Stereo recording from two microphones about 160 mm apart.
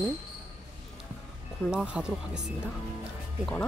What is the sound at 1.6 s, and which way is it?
Speech, 5° right (ahead or behind).